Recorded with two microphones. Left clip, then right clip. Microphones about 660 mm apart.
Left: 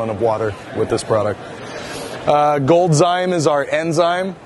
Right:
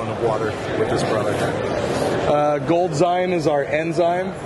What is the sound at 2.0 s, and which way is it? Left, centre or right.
A man's voice, left.